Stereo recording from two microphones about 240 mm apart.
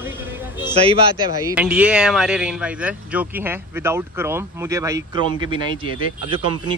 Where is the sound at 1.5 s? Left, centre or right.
Centre.